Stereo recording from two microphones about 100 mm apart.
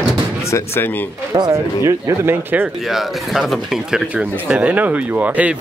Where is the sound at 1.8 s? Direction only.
25° right (ahead or behind).